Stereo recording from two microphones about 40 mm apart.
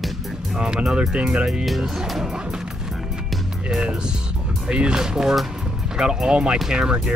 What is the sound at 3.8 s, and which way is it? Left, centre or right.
Speech, centre.